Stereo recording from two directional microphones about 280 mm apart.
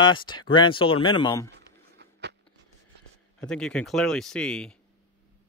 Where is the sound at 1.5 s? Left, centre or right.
Right.